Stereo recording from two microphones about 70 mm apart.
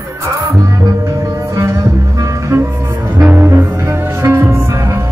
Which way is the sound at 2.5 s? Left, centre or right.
Right.